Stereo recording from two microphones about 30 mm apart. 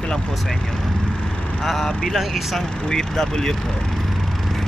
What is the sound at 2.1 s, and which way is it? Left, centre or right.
Speech, centre.